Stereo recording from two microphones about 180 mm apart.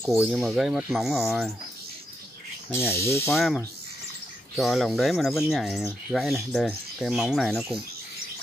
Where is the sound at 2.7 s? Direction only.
15° left (ahead or behind).